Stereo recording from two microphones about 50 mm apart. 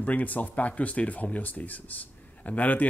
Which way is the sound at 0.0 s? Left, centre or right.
Left.